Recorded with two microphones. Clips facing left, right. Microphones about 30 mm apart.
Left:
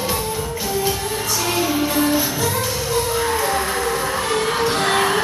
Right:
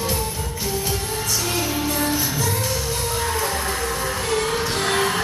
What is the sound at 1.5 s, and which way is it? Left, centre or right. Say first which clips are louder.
Music: left 7 dB; centre.